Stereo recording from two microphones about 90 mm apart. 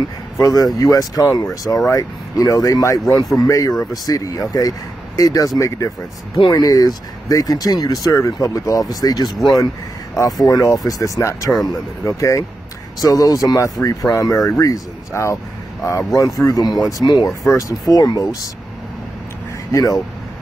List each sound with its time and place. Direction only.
0.4 s speech: 45° left (ahead or behind)
6.5 s speech: 45° left (ahead or behind)
17.5 s speech: 40° left (ahead or behind)
19.7 s speech: 45° left (ahead or behind)